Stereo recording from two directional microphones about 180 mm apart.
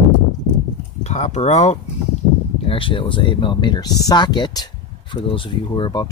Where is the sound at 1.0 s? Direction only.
40° left (ahead or behind).